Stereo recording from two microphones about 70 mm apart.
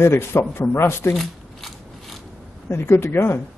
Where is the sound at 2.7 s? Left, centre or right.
Left.